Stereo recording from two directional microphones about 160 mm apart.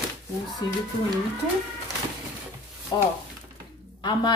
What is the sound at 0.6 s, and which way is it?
Speech, 25° left (ahead or behind).